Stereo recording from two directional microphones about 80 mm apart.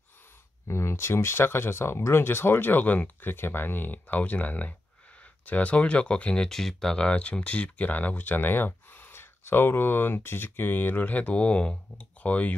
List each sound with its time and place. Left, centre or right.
0.7 s speech: left; by 12.5 s centre